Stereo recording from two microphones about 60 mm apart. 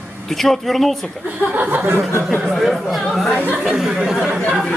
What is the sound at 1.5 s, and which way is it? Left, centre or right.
Speech, right.